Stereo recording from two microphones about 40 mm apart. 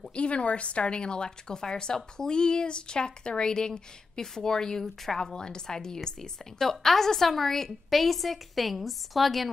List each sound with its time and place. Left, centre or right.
0.1 s speech: left
4.8 s a woman's voice: centre
5.2 s a woman's voice: centre